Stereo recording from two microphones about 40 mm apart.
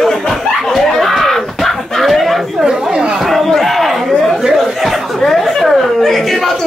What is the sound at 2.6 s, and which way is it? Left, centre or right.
Chatter, centre.